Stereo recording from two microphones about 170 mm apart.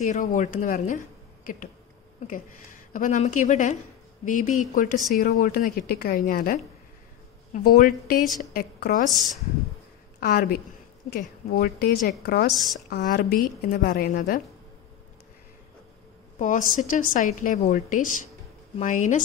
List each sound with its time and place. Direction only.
0.0 s a woman's voice: 45° left (ahead or behind); by 9.0 s 65° left (ahead or behind)
9.1 s speech: centre (ahead or behind)
10.2 s a woman's voice: 60° left (ahead or behind)
12.5 s speech: centre (ahead or behind)
12.9 s a woman's voice: 60° left (ahead or behind)
16.3 s a woman's voice: 50° left (ahead or behind)